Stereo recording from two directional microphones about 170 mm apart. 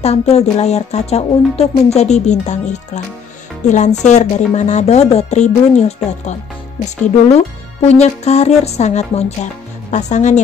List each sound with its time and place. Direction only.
0.0 s speech: 40° left (ahead or behind)
7.3 s speech: 40° left (ahead or behind)